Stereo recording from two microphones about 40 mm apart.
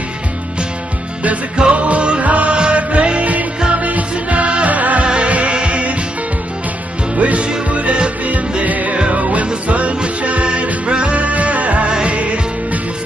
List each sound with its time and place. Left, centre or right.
1.6 s music: right
5.0 s music: right
7.2 s music: right
8.9 s music: right
11.1 s music: right